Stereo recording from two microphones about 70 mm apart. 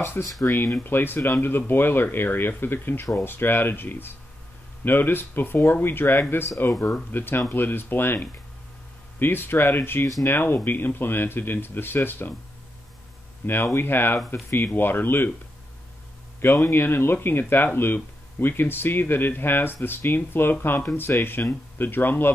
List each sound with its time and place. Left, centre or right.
0.5 s speech: left
13.4 s speech: left
16.3 s speech: left